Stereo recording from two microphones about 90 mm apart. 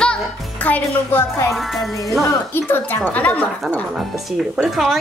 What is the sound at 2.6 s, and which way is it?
Speech, 25° left (ahead or behind).